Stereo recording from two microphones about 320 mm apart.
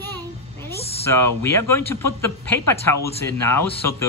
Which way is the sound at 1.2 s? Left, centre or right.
Centre.